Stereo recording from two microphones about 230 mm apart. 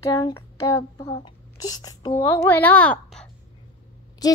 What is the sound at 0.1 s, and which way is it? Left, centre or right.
A child's voice, centre.